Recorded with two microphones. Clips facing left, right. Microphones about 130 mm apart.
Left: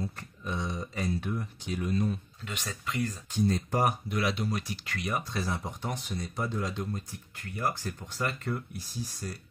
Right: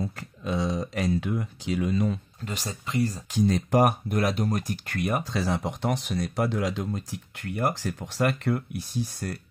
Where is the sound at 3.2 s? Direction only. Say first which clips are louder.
Right 2 dB; 90° right.